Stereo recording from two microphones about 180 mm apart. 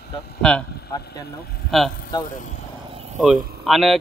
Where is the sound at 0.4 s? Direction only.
5° left (ahead or behind).